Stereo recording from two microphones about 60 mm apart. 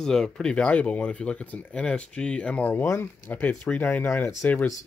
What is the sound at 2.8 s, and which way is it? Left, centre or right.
Speech, left.